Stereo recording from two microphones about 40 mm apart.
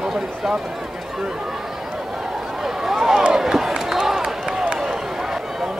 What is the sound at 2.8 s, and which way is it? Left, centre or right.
Speech, centre.